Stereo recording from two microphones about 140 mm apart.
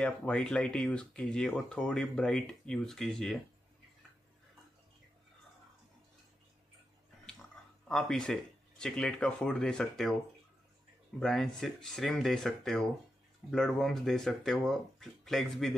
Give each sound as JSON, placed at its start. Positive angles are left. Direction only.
{"t": 0.0, "sound": "speech", "side_deg": 5}
{"t": 7.9, "sound": "speech", "side_deg": 5}
{"t": 11.1, "sound": "speech", "side_deg": 5}